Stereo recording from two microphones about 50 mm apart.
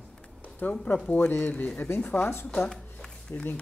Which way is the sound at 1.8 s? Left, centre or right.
Left.